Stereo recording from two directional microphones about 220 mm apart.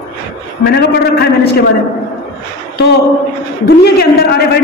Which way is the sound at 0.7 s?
45° left (ahead or behind).